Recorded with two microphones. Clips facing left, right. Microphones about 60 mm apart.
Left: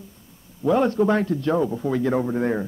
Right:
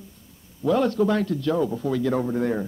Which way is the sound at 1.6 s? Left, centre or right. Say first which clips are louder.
Left 1 dB; centre.